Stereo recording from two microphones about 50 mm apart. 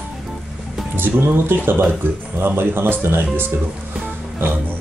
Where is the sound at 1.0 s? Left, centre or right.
Right.